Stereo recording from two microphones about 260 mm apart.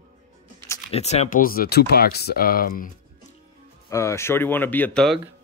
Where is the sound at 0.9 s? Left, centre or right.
Left.